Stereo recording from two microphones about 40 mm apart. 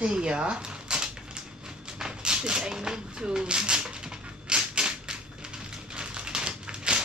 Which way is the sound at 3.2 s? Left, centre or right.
Right.